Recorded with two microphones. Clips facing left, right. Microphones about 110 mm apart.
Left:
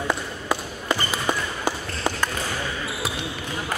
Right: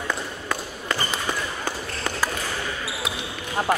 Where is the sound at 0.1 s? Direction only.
20° left (ahead or behind).